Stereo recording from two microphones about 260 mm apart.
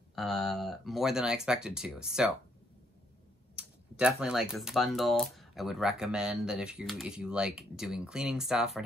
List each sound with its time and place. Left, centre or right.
0.1 s speech: centre
3.5 s speech: centre